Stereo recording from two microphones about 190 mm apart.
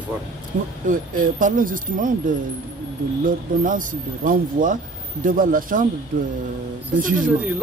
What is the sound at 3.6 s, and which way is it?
Speech, 45° right (ahead or behind).